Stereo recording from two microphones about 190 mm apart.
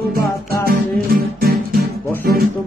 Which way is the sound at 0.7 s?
50° right (ahead or behind).